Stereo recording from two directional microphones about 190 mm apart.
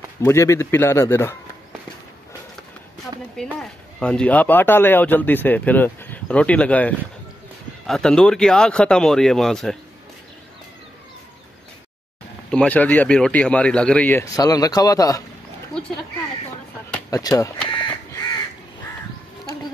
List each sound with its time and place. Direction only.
0.2 s speech: 15° left (ahead or behind)
4.0 s speech: 5° left (ahead or behind)
12.4 s speech: 5° left (ahead or behind)
17.1 s speech: 20° left (ahead or behind)
17.6 s crow: 25° left (ahead or behind)